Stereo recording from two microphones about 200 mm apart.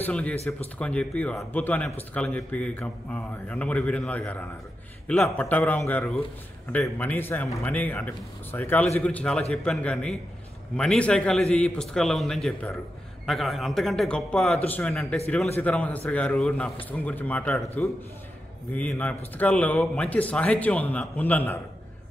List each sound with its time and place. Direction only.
0.0 s speech: 5° left (ahead or behind)